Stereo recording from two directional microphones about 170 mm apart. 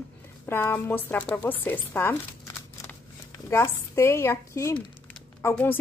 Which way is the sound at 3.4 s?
15° left (ahead or behind).